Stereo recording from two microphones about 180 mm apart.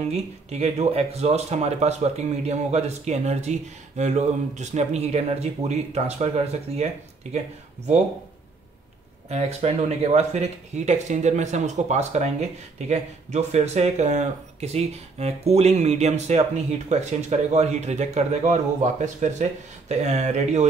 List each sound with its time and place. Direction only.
0.1 s speech: 35° right (ahead or behind)
9.3 s speech: 35° right (ahead or behind)